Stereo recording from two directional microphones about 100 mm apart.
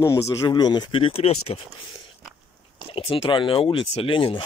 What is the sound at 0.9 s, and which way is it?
Speech, 70° left (ahead or behind).